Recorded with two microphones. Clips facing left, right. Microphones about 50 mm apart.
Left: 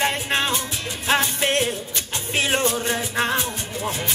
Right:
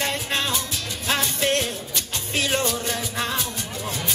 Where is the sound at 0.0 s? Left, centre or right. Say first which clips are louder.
Left 3 dB; left.